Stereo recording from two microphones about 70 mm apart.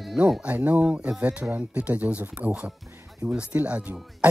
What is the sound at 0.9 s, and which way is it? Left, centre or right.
Speech, centre.